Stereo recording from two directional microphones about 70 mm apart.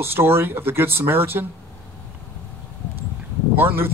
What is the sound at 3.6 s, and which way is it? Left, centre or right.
Speech, right.